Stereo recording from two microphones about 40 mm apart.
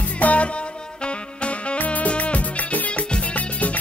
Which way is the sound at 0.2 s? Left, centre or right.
Left.